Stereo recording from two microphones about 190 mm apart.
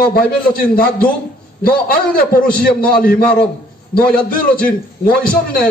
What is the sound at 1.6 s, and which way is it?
A man's voice, 50° left (ahead or behind).